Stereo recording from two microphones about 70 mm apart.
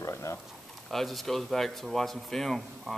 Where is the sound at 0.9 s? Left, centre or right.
Centre.